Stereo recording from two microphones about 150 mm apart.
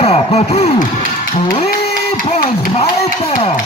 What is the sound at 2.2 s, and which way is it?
Speech, 40° left (ahead or behind).